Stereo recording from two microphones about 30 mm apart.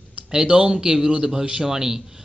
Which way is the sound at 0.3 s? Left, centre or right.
Right.